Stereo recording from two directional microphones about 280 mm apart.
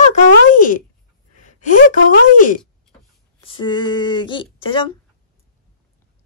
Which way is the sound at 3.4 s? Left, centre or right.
Centre.